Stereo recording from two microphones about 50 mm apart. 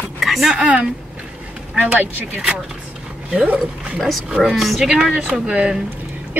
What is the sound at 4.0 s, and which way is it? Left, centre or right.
Speech, centre.